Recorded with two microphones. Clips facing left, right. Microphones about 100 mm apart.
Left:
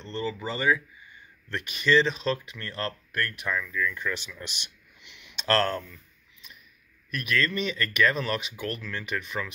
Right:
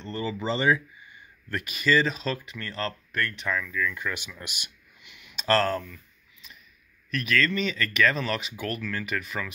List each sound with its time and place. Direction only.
0.2 s speech: 20° right (ahead or behind)
1.5 s speech: 5° right (ahead or behind)
3.9 s speech: 10° right (ahead or behind)
7.1 s speech: 5° left (ahead or behind)